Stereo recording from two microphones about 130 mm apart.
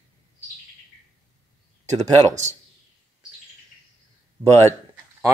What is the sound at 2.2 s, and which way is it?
Speech, 65° right (ahead or behind).